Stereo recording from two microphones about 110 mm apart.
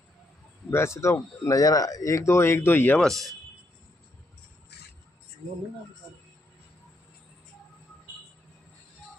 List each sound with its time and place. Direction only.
0.7 s speech: 25° left (ahead or behind)